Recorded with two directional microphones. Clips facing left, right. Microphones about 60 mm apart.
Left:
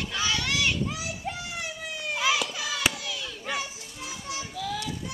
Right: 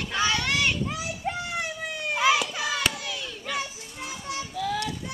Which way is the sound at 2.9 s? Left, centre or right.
Right.